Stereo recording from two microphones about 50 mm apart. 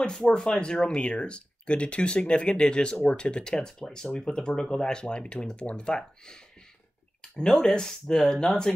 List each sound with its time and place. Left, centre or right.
0.0 s speech: centre
7.5 s speech: centre